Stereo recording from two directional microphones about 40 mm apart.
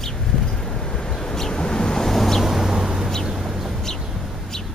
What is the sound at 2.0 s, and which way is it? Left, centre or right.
Vehicle, centre.